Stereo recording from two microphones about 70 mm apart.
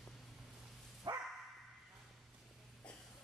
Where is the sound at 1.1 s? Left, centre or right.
Right.